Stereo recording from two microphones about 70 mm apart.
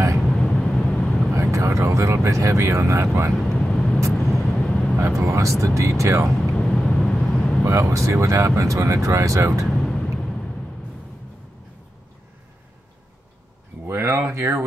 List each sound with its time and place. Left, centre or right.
0.3 s vehicle: centre
1.3 s vehicle: right
3.3 s vehicle: centre
4.6 s vehicle: centre
5.0 s speech: right
6.5 s vehicle: centre
7.6 s speech: right
9.8 s vehicle: centre
13.8 s a sound: right